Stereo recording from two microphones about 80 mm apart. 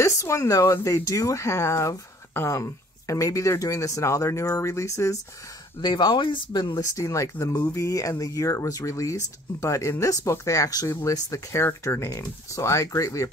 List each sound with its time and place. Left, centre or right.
0.0 s speech: left
5.8 s speech: left
6.8 s speech: left